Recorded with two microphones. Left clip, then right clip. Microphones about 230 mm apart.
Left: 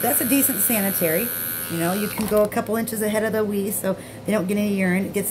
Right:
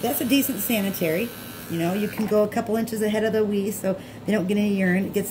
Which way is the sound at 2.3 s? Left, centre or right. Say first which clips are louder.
Left 2 dB; centre.